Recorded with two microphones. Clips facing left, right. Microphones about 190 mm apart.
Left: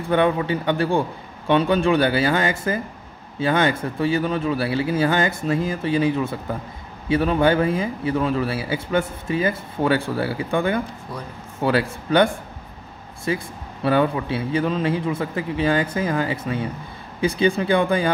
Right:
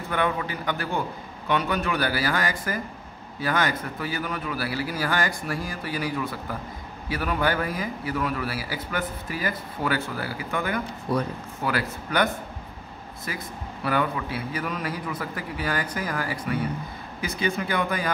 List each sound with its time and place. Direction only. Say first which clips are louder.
0.1 s a man's voice: left 8 dB; 30° left (ahead or behind)
11.1 s speech: right 12 dB; 70° right (ahead or behind)
11.6 s a man's voice: left 7 dB; 30° left (ahead or behind)